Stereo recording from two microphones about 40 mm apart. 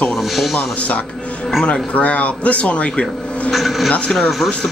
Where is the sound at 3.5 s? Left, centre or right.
Centre.